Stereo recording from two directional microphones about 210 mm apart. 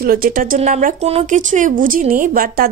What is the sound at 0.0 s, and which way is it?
Speech, 45° right (ahead or behind).